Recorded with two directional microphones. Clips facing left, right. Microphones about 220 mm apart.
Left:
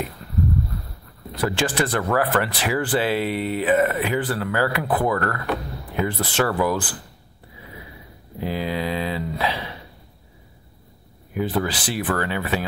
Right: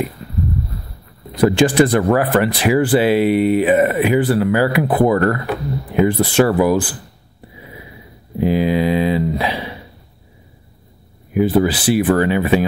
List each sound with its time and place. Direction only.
1.3 s speech: 15° right (ahead or behind)
8.4 s speech: 15° right (ahead or behind)
11.6 s speech: 10° right (ahead or behind)